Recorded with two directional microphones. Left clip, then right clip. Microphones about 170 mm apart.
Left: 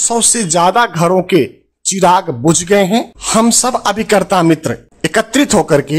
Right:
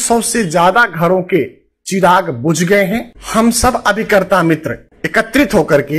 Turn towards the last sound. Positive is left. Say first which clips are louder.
# even
turn(degrees=25)  # may be behind; listen again after turning